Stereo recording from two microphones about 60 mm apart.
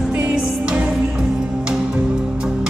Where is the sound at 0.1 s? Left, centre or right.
Centre.